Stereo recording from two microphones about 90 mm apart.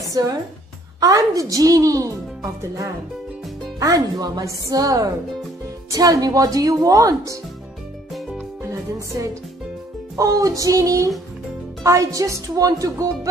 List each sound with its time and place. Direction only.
0.0 s music: 45° right (ahead or behind)
1.0 s speech: 40° right (ahead or behind)
10.1 s speech: 40° right (ahead or behind)